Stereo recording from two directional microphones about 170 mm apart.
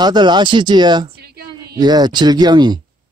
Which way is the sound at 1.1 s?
70° right (ahead or behind).